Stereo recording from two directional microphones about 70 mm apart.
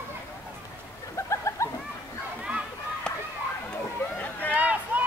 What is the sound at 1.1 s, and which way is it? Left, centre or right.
Bird, left.